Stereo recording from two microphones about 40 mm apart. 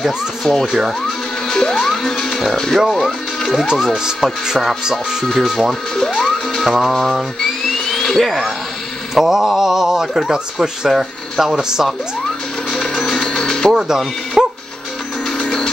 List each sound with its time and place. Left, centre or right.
0.7 s speech: centre
1.5 s music: centre
1.8 s speech: centre
2.9 s speech: centre
3.9 s speech: centre
5.4 s speech: centre
5.7 s speech: centre
6.9 s a sound: centre
8.2 s speech: centre
12.8 s music: centre
13.3 s music: centre
13.7 s speech: centre
14.4 s music: centre
15.3 s music: centre